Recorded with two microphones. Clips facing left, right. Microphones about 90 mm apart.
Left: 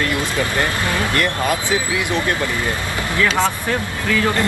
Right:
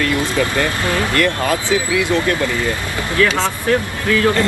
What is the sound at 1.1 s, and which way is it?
Speech, 20° left (ahead or behind).